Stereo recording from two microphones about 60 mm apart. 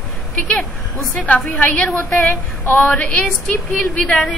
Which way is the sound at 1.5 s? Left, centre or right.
Left.